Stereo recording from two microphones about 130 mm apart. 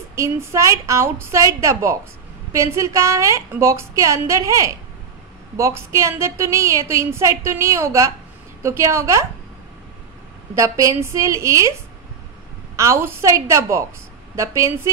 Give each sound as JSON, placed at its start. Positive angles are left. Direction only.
{"t": 0.1, "sound": "a woman's voice", "side_deg": -20}
{"t": 10.5, "sound": "a woman's voice", "side_deg": -25}
{"t": 12.7, "sound": "a woman's voice", "side_deg": -20}